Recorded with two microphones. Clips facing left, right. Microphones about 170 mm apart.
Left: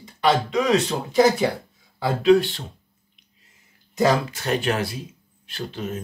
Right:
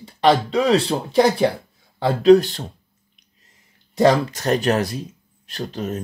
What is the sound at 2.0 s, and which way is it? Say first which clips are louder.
Speech: right 4 dB; 40° right (ahead or behind).